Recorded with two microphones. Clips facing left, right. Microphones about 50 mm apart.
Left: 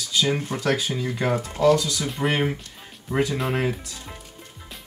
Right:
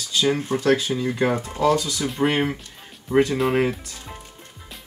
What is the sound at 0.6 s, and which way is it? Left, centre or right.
Speech, right.